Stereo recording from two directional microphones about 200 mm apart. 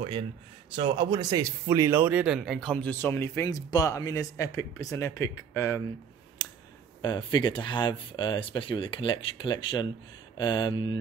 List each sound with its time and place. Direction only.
0.7 s speech: 20° right (ahead or behind); by 5.8 s 15° left (ahead or behind)
7.0 s speech: 20° left (ahead or behind)